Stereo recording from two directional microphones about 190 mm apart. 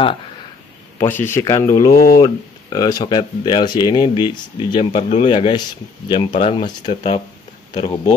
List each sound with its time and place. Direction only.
0.9 s speech: 10° left (ahead or behind)
1.9 s speech: 50° left (ahead or behind)
2.1 s speech: 20° left (ahead or behind)